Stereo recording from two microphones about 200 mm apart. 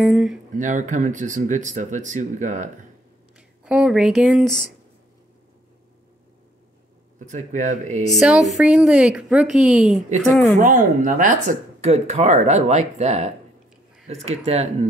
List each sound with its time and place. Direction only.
0.0 s a woman's voice: centre (ahead or behind)
0.6 s speech: 40° right (ahead or behind)
3.3 s speech: 5° right (ahead or behind)
7.2 s speech: 40° right (ahead or behind)
8.1 s a woman's voice: centre (ahead or behind)
10.6 s speech: 40° right (ahead or behind)